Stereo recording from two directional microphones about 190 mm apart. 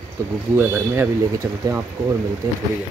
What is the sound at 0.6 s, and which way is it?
Speech, 10° right (ahead or behind).